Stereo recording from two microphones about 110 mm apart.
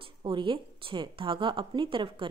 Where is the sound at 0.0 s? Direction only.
50° right (ahead or behind).